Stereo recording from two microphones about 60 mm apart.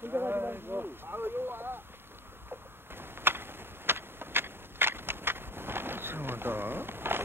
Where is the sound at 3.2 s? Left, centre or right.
Right.